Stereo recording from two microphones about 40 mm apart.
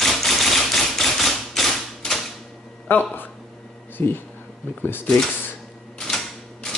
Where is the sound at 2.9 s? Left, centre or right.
Left.